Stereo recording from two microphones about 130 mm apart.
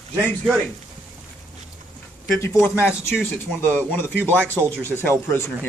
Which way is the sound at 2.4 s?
20° left (ahead or behind).